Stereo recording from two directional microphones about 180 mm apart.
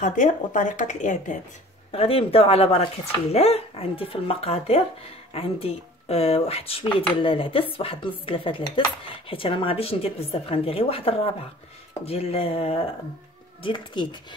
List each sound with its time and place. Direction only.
0.0 s speech: 45° left (ahead or behind)
1.9 s speech: 30° left (ahead or behind)